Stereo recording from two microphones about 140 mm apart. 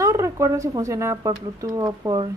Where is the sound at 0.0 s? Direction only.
20° right (ahead or behind).